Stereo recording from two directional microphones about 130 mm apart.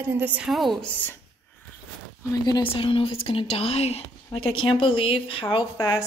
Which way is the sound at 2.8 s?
45° left (ahead or behind).